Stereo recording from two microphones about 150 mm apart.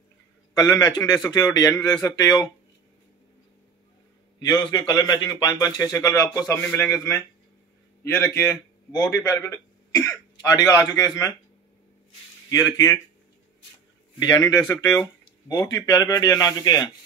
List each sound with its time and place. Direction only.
0.6 s speech: 20° left (ahead or behind)
4.4 s a man's voice: 25° left (ahead or behind)
12.4 s speech: 25° left (ahead or behind)
14.3 s speech: 20° left (ahead or behind)